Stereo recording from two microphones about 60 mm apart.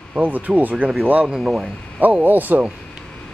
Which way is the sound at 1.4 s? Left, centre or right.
Centre.